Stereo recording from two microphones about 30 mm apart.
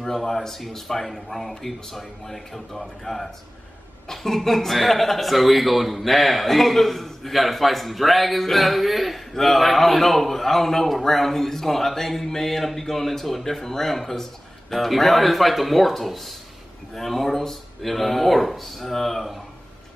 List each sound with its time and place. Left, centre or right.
0.0 s a man's voice: centre